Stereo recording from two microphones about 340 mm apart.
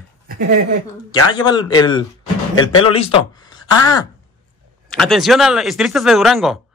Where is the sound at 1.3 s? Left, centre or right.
Centre.